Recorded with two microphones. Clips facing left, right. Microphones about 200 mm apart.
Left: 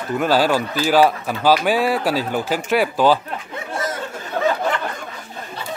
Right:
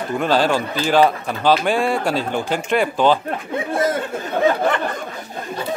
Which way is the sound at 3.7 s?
55° right (ahead or behind).